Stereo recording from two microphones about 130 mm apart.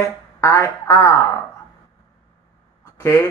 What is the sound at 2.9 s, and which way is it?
Quack, 20° left (ahead or behind).